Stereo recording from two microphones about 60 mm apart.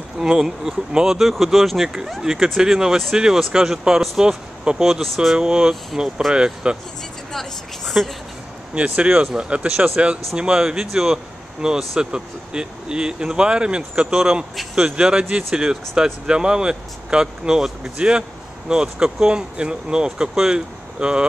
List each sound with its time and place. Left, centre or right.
0.2 s speech: centre
7.3 s a woman's voice: centre
8.7 s speech: right